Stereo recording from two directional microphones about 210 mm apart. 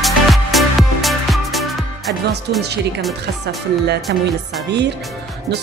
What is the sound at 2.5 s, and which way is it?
Speech, 50° right (ahead or behind).